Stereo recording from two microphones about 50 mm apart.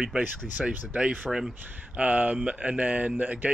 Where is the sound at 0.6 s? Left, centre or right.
Centre.